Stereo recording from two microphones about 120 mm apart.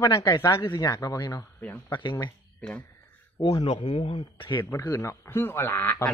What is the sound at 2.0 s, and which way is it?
Speech, 40° left (ahead or behind).